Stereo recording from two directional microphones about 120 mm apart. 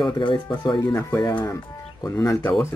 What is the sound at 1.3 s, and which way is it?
Speech, 20° left (ahead or behind).